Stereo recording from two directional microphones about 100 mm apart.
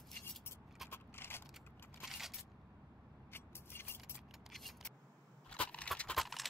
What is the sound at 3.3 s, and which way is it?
Scissors, 25° left (ahead or behind).